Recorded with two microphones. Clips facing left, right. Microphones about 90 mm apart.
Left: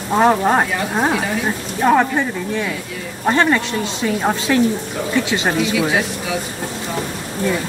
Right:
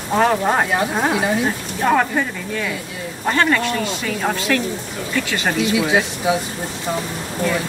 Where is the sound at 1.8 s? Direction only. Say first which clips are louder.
Left 3 dB; 15° left (ahead or behind).